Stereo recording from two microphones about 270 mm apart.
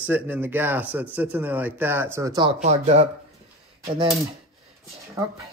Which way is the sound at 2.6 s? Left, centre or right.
Right.